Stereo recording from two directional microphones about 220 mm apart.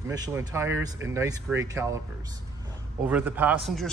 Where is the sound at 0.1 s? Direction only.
15° right (ahead or behind).